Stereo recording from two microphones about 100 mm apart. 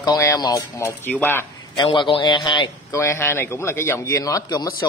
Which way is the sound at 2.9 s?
25° left (ahead or behind).